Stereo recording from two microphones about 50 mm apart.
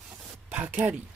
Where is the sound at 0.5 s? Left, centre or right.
Right.